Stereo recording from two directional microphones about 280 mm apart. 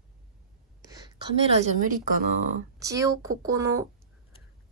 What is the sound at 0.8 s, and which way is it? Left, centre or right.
A woman's voice, centre.